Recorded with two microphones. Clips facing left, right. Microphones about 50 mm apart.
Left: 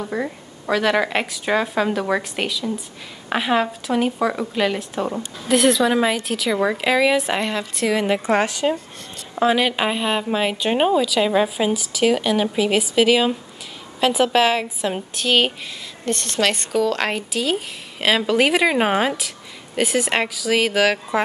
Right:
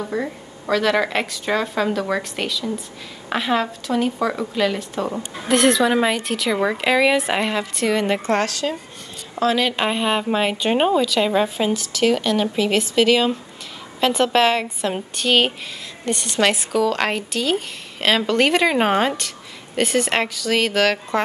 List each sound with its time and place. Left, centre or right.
0.1 s a woman's voice: centre
8.2 s a woman's voice: centre